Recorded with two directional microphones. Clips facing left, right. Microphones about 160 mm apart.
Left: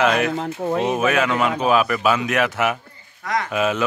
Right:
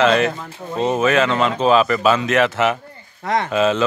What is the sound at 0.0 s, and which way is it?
Speech, 10° left (ahead or behind).